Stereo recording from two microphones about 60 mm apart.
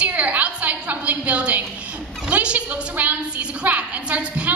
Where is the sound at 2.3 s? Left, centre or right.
Right.